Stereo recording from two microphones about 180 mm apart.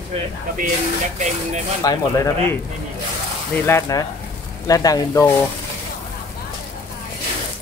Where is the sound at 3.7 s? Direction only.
15° left (ahead or behind).